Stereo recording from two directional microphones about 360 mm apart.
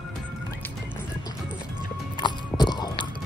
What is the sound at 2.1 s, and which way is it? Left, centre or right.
Music, centre.